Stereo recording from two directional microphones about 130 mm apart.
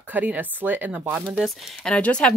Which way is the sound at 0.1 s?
15° right (ahead or behind).